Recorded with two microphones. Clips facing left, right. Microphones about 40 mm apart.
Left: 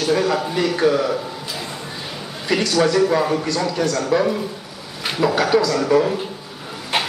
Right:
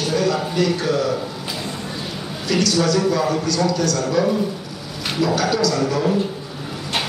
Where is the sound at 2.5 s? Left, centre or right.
Left.